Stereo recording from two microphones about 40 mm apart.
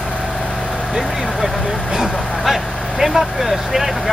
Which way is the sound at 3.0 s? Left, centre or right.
Centre.